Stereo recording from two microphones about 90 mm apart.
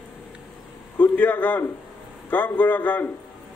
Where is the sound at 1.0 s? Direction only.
20° left (ahead or behind).